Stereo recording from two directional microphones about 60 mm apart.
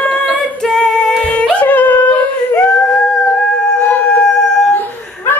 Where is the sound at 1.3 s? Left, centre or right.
Left.